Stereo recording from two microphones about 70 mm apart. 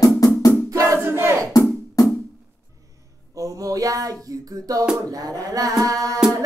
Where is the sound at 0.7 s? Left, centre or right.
Right.